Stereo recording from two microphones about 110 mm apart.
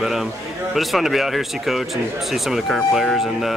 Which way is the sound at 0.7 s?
Centre (ahead or behind).